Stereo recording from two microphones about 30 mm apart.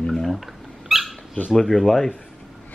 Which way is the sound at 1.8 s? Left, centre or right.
Centre.